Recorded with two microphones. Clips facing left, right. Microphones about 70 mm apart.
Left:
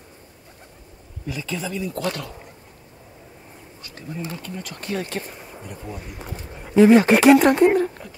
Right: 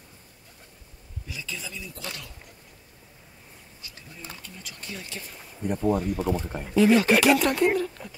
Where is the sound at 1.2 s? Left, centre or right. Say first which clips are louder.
Left 9 dB; left.